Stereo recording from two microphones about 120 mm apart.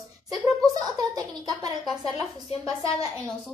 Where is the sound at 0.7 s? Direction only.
35° right (ahead or behind).